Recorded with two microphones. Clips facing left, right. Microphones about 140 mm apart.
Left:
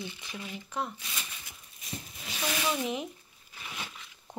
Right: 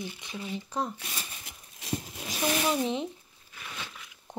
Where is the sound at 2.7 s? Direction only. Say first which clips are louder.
Right 4 dB; 30° right (ahead or behind).